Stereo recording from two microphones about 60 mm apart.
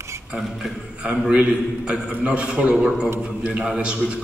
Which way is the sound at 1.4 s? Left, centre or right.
Centre.